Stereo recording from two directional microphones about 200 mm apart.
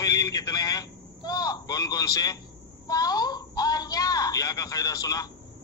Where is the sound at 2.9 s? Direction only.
20° left (ahead or behind).